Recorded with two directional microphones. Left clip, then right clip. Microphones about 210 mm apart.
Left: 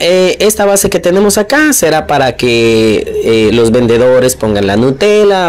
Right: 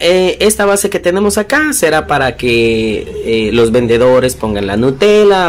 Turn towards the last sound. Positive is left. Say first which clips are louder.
# even
turn(degrees=25)  # may be behind; listen again after turning